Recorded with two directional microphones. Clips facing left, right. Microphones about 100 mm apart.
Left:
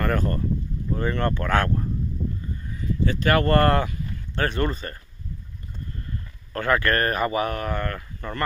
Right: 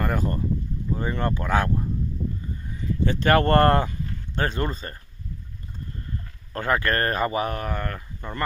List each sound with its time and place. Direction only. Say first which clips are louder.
0.0 s speech: left 1 dB; 15° right (ahead or behind)
2.7 s speech: even; 30° right (ahead or behind)
6.5 s speech: left 2 dB; 25° right (ahead or behind)